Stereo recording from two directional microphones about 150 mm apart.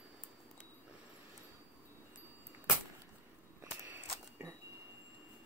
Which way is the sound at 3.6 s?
15° right (ahead or behind).